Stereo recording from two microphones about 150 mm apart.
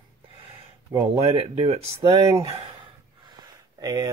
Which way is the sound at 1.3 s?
40° right (ahead or behind).